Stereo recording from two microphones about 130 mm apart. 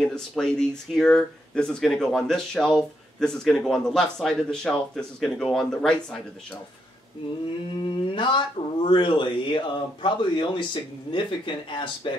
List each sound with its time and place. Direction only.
0.0 s speech: 5° left (ahead or behind)
7.8 s speech: 40° left (ahead or behind)